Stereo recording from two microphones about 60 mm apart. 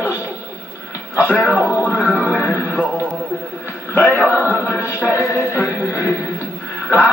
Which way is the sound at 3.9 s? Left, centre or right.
Left.